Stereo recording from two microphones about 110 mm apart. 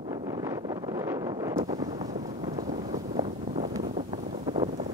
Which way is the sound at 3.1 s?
65° right (ahead or behind).